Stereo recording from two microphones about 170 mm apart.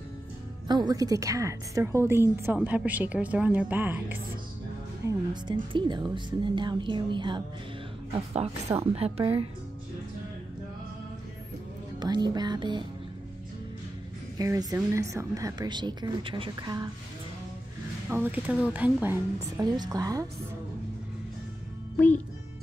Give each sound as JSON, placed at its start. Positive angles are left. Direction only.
{"t": 0.7, "sound": "speech", "side_deg": -25}
{"t": 5.0, "sound": "speech", "side_deg": -25}
{"t": 8.9, "sound": "a woman's voice", "side_deg": -35}
{"t": 12.0, "sound": "speech", "side_deg": -25}
{"t": 14.4, "sound": "speech", "side_deg": -20}
{"t": 18.1, "sound": "speech", "side_deg": -10}
{"t": 19.6, "sound": "speech", "side_deg": -20}
{"t": 21.9, "sound": "a child's voice", "side_deg": 10}